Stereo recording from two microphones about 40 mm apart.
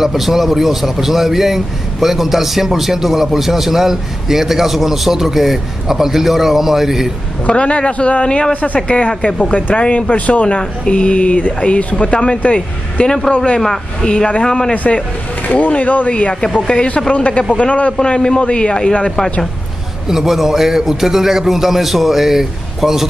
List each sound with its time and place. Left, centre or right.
0.0 s a man's voice: centre
7.4 s a man's voice: left
10.4 s speech: left
15.4 s a man's voice: left
16.1 s speech: left
16.4 s speech: centre
17.1 s a man's voice: left
17.9 s speech: left
20.1 s a man's voice: centre